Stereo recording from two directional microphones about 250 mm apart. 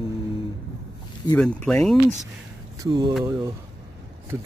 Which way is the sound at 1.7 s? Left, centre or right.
Centre.